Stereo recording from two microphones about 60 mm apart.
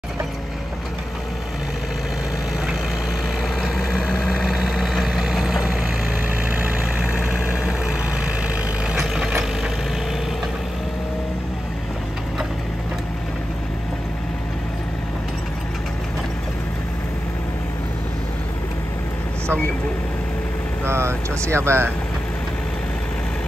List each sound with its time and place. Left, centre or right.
3.6 s vehicle: centre
7.0 s vehicle: right
7.6 s vehicle: centre
20.8 s vehicle: right